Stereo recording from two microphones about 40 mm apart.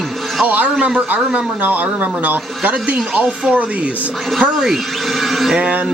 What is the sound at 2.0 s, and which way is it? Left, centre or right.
Speech, right.